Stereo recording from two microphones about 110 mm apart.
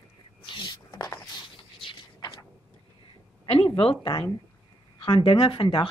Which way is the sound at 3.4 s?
50° left (ahead or behind).